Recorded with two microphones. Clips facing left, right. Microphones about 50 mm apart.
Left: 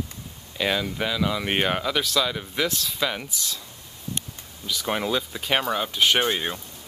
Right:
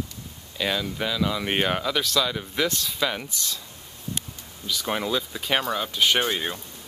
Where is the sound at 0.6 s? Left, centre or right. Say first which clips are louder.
Left 2 dB; centre.